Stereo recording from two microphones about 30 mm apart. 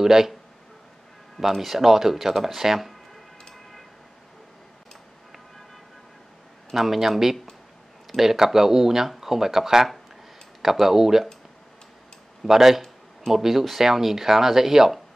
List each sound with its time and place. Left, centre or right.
0.0 s speech: centre
1.4 s speech: centre
6.7 s speech: centre
12.4 s speech: centre